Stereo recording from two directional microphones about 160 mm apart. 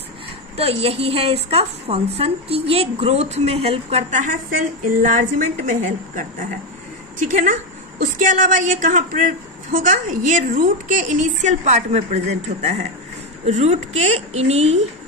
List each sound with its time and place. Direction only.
0.6 s a woman's voice: 40° right (ahead or behind)